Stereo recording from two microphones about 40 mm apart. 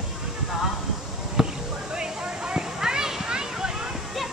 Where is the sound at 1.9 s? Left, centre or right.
Right.